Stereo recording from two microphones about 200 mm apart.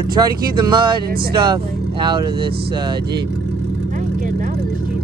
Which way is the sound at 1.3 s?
20° right (ahead or behind).